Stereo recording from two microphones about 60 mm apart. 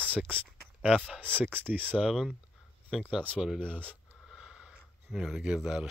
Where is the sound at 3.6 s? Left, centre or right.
Centre.